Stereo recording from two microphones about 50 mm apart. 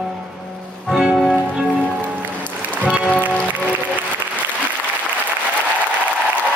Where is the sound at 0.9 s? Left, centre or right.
Centre.